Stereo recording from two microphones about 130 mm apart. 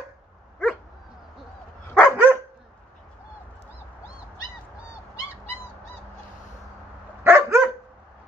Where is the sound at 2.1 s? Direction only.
15° right (ahead or behind).